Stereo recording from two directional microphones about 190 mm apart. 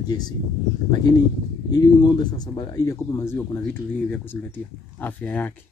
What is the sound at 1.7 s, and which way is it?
Speech, 20° left (ahead or behind).